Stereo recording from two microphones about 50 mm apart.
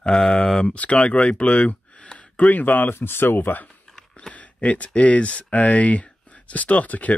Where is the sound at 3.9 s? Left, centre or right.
Centre.